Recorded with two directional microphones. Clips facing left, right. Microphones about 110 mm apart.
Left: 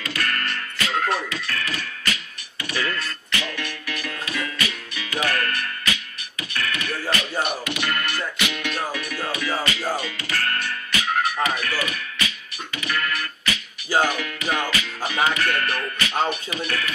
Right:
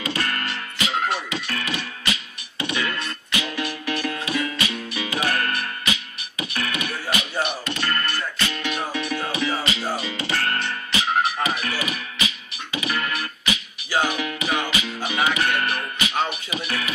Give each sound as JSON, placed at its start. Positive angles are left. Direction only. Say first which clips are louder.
{"t": 0.0, "sound": "music", "louder": "right 1 dB", "side_deg": -20}
{"t": 7.6, "sound": "music", "louder": "even", "side_deg": 10}
{"t": 8.9, "sound": "music", "louder": "right 2 dB", "side_deg": -25}